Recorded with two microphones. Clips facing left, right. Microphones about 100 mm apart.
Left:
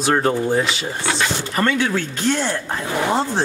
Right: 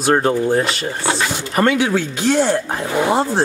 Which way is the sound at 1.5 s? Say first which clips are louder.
Right 5 dB; 15° right (ahead or behind).